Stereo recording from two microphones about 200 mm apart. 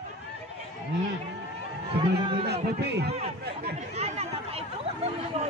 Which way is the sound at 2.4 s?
55° right (ahead or behind).